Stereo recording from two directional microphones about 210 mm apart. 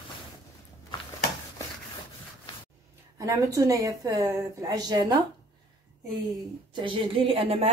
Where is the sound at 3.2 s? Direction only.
15° right (ahead or behind).